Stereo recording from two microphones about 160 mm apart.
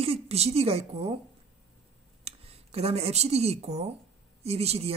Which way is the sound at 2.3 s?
40° right (ahead or behind).